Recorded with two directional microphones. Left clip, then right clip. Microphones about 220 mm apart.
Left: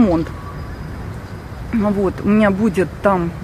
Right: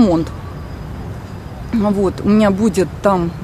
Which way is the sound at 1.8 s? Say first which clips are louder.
Right 2 dB; 10° right (ahead or behind).